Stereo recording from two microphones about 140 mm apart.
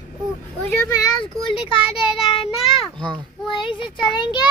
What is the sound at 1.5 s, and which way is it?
Speech, 40° left (ahead or behind).